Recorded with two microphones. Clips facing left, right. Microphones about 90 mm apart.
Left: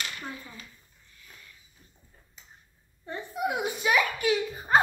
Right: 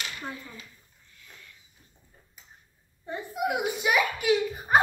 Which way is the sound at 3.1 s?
10° right (ahead or behind).